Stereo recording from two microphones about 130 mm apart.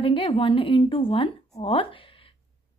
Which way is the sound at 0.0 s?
40° left (ahead or behind).